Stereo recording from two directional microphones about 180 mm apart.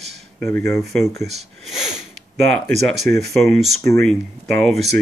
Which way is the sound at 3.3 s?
Centre (ahead or behind).